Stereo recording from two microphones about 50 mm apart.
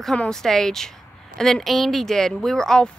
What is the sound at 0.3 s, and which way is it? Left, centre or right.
A woman's voice, centre.